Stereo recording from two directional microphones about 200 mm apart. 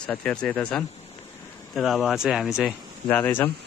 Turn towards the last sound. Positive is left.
turn(degrees=10)  # may be behind; listen again after turning